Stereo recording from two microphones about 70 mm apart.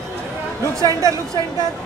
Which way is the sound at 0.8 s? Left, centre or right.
Right.